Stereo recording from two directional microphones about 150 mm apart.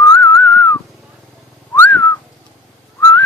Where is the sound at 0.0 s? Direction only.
20° left (ahead or behind).